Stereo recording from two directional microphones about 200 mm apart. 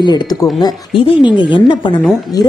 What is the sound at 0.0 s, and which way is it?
Speech, 20° left (ahead or behind).